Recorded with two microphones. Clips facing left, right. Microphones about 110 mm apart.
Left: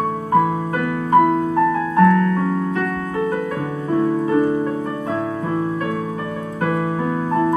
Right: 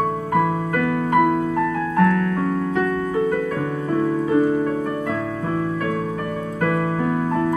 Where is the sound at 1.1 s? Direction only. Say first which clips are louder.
Left 4 dB; 25° left (ahead or behind).